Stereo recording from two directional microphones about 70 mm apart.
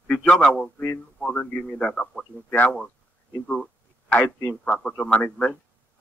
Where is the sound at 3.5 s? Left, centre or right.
Centre.